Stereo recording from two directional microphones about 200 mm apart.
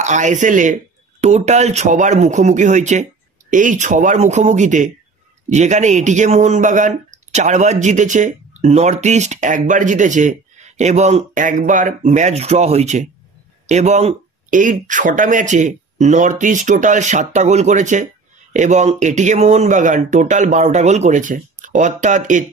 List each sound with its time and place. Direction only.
0.0 s speech: 35° right (ahead or behind)